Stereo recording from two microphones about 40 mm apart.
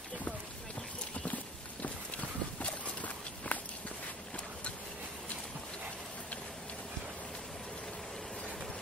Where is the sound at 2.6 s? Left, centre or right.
Left.